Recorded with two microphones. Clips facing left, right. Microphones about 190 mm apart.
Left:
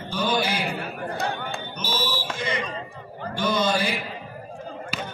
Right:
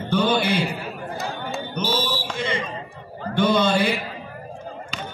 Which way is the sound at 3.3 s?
60° right (ahead or behind).